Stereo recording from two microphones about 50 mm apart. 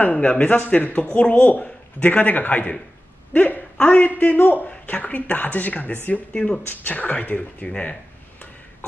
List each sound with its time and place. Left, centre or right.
0.0 s a man's voice: left